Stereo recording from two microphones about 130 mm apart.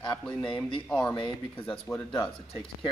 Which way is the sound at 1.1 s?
40° left (ahead or behind).